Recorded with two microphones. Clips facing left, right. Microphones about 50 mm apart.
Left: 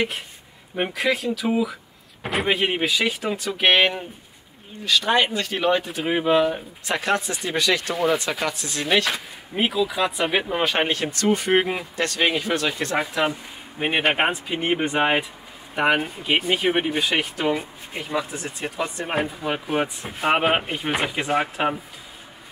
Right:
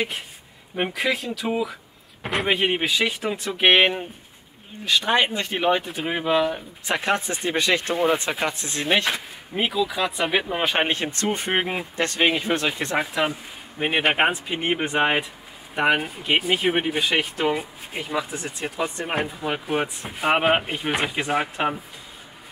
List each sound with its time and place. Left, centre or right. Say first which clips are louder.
0.7 s speech: left 1 dB; centre
3.5 s speech: right 1 dB; centre
5.9 s speech: left 3 dB; centre
6.9 s speech: even; right
9.1 s speech: even; centre
10.6 s speech: left 1 dB; centre
11.2 s speech: left 6 dB; right
11.5 s speech: left 3 dB; centre
11.8 s speech: even; right
12.2 s speech: right 1 dB; centre